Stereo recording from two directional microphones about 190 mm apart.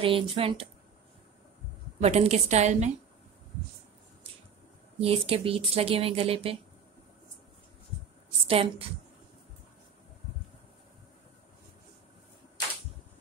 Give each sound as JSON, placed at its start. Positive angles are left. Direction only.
{"t": 0.0, "sound": "speech", "side_deg": -30}
{"t": 2.0, "sound": "a woman's voice", "side_deg": -35}
{"t": 5.0, "sound": "speech", "side_deg": -30}
{"t": 8.5, "sound": "speech", "side_deg": -30}